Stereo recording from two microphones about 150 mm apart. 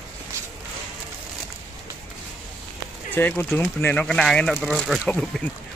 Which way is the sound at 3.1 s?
15° left (ahead or behind).